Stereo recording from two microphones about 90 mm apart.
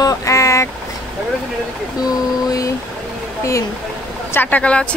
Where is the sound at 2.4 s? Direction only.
40° left (ahead or behind).